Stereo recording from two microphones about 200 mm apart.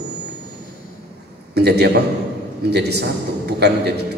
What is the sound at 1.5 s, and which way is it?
A man's voice, 55° right (ahead or behind).